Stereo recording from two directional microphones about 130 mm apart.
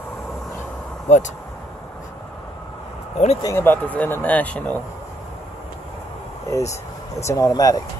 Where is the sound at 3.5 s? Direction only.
15° left (ahead or behind).